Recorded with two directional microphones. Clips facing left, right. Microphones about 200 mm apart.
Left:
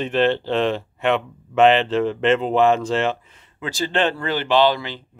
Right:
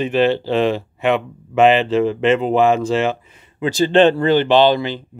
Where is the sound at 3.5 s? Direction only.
20° right (ahead or behind).